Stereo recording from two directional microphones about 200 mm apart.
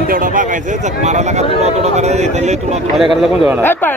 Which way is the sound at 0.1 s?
40° right (ahead or behind).